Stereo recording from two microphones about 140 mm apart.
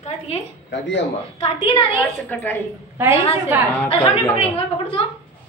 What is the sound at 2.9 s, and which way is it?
Speech, 15° right (ahead or behind).